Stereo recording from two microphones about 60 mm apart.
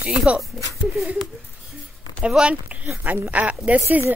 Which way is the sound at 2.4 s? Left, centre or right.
Right.